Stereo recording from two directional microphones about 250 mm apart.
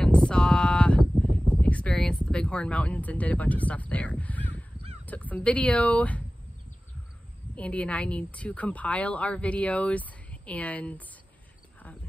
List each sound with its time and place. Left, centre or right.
0.0 s a sound: centre
2.3 s speech: centre
7.5 s speech: centre